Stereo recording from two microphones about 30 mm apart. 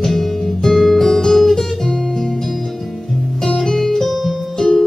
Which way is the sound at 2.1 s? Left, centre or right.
Centre.